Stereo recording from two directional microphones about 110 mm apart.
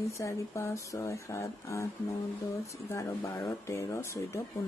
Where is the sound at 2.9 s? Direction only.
25° left (ahead or behind).